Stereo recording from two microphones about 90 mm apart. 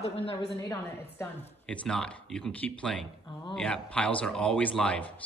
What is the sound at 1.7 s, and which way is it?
A woman's voice, 10° left (ahead or behind).